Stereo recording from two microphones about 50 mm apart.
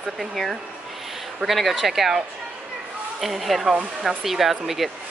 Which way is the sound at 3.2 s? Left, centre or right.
Centre.